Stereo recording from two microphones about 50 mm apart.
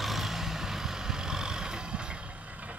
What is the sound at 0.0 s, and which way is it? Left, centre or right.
Vehicle, centre.